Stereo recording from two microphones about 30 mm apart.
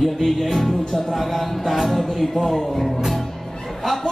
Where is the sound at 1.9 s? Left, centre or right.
Centre.